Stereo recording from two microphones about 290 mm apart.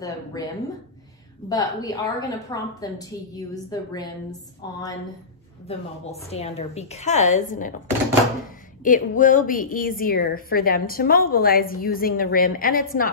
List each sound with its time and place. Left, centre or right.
0.0 s a woman's voice: centre
1.5 s a woman's voice: centre
5.7 s a woman's voice: left
8.8 s a woman's voice: left